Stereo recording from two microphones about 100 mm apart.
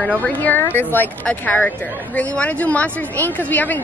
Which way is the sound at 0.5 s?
20° left (ahead or behind).